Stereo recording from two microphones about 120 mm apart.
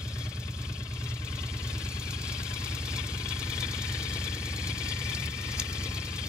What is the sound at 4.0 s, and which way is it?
Engine, 5° right (ahead or behind).